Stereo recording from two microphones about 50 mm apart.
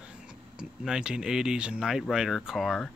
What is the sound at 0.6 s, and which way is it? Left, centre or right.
Speech, centre.